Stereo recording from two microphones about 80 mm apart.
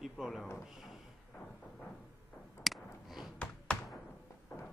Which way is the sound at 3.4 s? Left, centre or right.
Centre.